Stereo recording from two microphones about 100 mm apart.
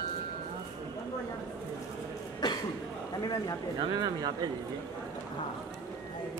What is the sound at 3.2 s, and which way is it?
Speech, 40° left (ahead or behind).